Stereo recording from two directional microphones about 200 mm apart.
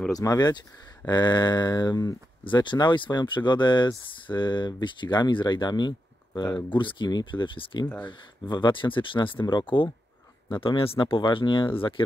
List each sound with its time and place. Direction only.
0.2 s speech: 20° left (ahead or behind)